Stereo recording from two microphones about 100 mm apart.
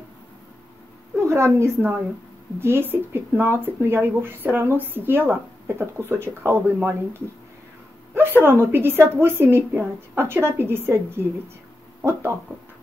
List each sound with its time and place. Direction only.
1.1 s speech: 30° right (ahead or behind)
12.0 s speech: 25° right (ahead or behind)